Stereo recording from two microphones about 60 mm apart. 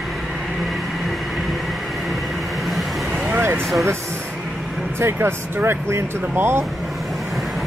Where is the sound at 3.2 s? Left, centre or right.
Right.